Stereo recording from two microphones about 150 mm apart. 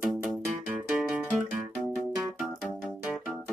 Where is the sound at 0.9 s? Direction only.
5° right (ahead or behind).